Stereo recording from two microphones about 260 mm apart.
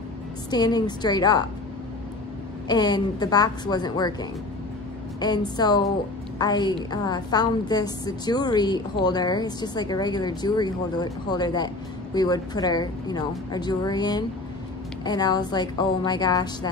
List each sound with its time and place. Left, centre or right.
0.5 s a woman's voice: centre
2.7 s a woman's voice: centre